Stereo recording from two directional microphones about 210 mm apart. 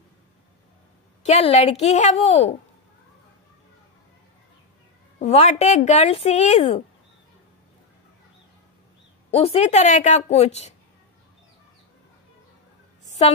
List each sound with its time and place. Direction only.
1.2 s speech: 30° left (ahead or behind)
5.2 s speech: 30° left (ahead or behind)
9.3 s speech: 30° left (ahead or behind)
13.0 s a sound: 35° left (ahead or behind)